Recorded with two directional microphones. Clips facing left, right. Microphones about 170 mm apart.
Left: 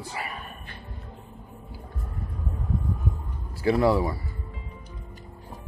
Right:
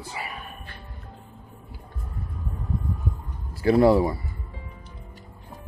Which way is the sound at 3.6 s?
40° right (ahead or behind).